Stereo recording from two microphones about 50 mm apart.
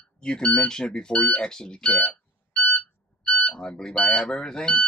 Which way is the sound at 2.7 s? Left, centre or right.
Left.